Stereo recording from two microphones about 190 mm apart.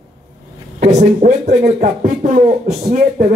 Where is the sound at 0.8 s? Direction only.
40° right (ahead or behind).